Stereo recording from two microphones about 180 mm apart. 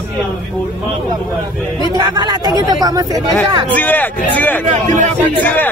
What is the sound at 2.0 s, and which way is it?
Speech, 20° right (ahead or behind).